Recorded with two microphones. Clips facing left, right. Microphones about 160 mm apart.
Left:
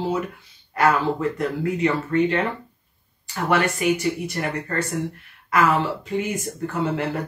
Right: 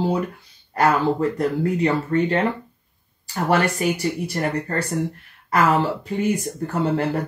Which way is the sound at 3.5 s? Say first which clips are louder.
Even; 35° right (ahead or behind).